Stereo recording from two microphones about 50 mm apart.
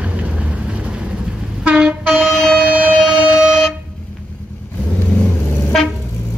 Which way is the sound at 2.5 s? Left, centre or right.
Right.